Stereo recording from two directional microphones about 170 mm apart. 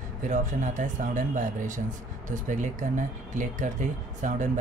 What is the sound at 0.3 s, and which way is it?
Speech, 50° right (ahead or behind).